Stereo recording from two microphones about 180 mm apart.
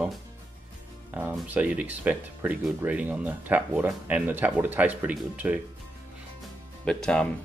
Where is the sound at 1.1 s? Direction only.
10° right (ahead or behind).